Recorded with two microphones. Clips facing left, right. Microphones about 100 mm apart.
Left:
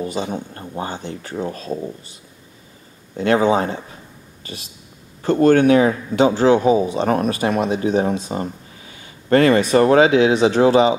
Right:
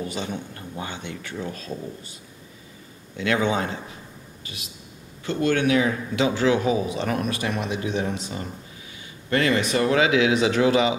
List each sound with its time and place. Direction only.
0.3 s speech: 40° left (ahead or behind)
3.2 s speech: 35° left (ahead or behind)
5.2 s speech: 45° left (ahead or behind)